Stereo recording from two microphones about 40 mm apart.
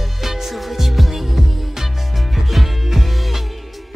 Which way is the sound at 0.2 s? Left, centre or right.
Centre.